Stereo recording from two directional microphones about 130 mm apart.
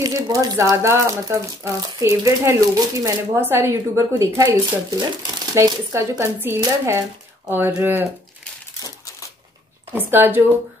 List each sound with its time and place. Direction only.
0.0 s speech: 30° right (ahead or behind)
9.9 s speech: 15° right (ahead or behind)